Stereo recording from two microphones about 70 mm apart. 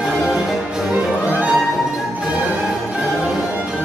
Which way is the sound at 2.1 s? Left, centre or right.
Centre.